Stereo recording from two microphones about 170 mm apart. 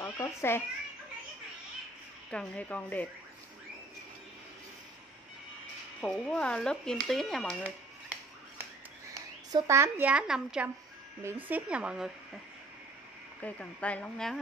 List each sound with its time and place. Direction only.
0.0 s a child's voice: 15° left (ahead or behind)
2.3 s speech: 10° left (ahead or behind)
5.9 s speech: 5° left (ahead or behind)
9.5 s a woman's voice: 20° right (ahead or behind)
13.4 s speech: 5° left (ahead or behind)